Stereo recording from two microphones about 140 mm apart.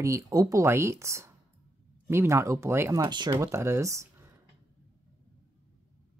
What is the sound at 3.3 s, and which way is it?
Speech, 20° right (ahead or behind).